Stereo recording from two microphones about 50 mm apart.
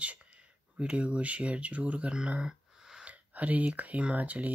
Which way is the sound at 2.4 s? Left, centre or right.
Centre.